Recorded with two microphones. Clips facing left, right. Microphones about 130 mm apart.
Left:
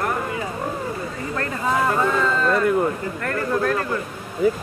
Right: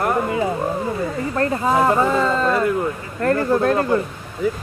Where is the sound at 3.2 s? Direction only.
30° right (ahead or behind).